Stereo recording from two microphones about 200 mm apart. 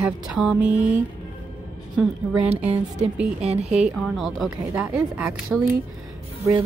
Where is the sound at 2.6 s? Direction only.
5° right (ahead or behind).